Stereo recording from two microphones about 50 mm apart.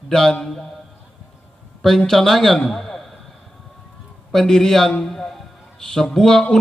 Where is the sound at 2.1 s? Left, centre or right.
Centre.